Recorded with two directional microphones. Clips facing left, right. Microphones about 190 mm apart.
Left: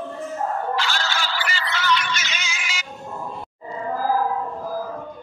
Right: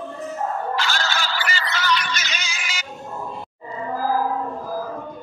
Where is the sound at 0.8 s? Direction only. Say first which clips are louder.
Right 1 dB; 45° right (ahead or behind).